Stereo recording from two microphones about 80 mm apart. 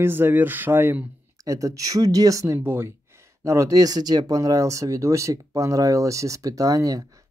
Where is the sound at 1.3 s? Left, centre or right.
Right.